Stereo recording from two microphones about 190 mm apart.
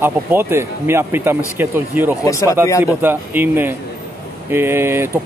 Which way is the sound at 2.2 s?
15° left (ahead or behind).